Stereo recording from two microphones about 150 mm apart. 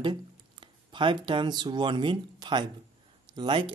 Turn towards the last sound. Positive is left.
turn(degrees=-35)  # may be behind; listen again after turning